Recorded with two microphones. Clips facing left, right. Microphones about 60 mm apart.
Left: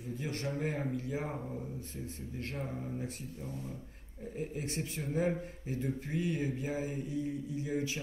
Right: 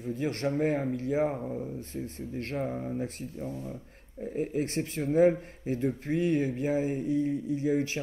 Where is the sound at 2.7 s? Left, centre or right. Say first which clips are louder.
Right 6 dB; right.